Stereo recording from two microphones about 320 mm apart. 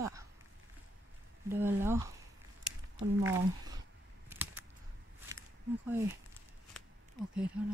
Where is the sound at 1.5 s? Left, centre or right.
Centre.